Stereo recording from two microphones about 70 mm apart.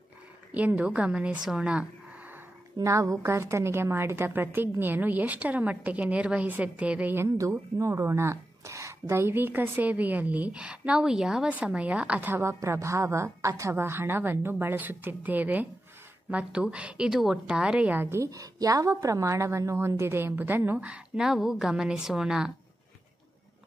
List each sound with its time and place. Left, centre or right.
0.5 s a woman's voice: right
2.8 s a woman's voice: right; by 7.2 s centre
7.3 s a woman's voice: right
12.4 s a woman's voice: right; by 17.9 s centre
17.9 s a woman's voice: right
18.3 s a woman's voice: right
21.2 s a woman's voice: centre